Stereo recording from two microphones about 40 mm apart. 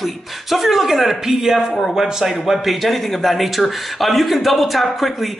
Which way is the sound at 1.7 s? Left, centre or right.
Centre.